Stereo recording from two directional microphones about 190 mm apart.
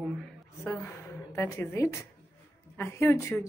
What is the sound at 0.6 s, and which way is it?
A woman's voice, 10° left (ahead or behind).